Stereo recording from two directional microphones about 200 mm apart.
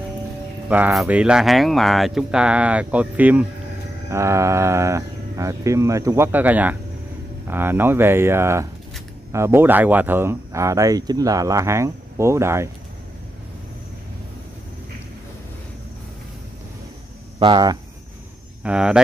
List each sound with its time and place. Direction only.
0.7 s speech: 10° right (ahead or behind)
17.4 s speech: 20° right (ahead or behind)
18.6 s speech: 5° right (ahead or behind)